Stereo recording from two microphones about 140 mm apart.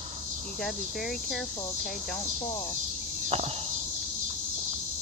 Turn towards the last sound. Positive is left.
turn(degrees=-50)  # may be behind; listen again after turning